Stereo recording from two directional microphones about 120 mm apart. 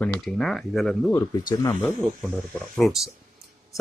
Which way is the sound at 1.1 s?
25° left (ahead or behind).